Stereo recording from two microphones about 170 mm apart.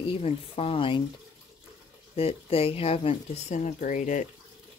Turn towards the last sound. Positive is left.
turn(degrees=50)  # may be behind; listen again after turning